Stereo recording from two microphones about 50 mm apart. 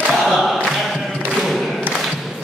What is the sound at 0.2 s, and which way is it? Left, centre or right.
Choir, centre.